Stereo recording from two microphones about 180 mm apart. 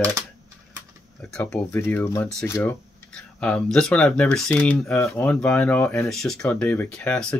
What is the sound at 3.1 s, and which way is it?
Speech, 5° left (ahead or behind).